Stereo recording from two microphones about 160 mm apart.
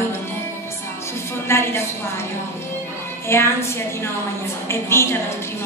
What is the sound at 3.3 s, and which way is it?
A woman's voice, 15° left (ahead or behind).